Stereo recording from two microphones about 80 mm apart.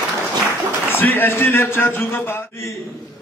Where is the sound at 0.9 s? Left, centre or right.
Left.